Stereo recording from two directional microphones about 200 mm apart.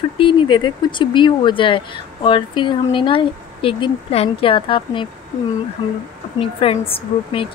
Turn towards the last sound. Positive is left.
turn(degrees=25)  # may be behind; listen again after turning